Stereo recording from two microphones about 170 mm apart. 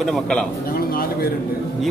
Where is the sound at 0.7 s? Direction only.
60° left (ahead or behind).